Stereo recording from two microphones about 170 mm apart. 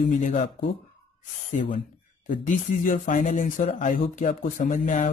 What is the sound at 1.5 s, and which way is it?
Speech, 50° left (ahead or behind).